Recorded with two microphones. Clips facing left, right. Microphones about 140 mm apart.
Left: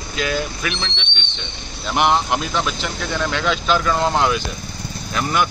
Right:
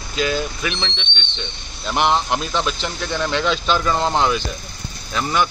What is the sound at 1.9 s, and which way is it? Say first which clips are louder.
Speech: left 1 dB; 10° left (ahead or behind).